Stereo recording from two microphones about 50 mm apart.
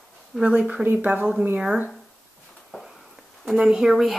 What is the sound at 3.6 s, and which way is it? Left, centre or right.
Speech, centre.